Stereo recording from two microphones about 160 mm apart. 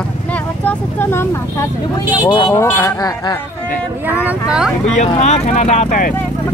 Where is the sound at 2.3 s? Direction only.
30° left (ahead or behind).